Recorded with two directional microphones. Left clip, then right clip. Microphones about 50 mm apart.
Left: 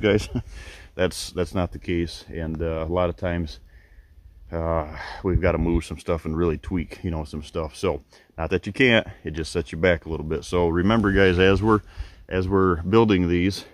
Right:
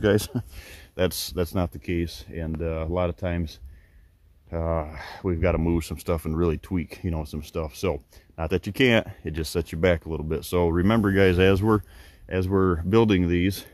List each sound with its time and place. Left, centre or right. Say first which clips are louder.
0.1 s speech: left 1 dB; right
1.8 s speech: left 3 dB; centre
5.7 s speech: left 1 dB; right
6.7 s speech: left 1 dB; right; by 8.0 s centre
8.5 s speech: left 2 dB; right; by 13.7 s centre